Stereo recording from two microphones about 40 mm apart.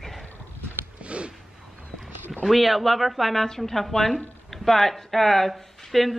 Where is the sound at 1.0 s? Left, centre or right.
Right.